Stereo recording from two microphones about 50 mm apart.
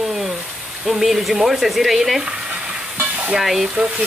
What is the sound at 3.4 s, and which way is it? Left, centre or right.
Speech, centre.